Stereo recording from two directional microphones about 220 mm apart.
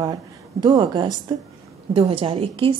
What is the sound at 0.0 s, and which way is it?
A woman's voice, 20° right (ahead or behind).